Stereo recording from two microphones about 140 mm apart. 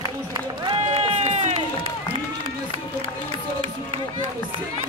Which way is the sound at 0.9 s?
50° right (ahead or behind).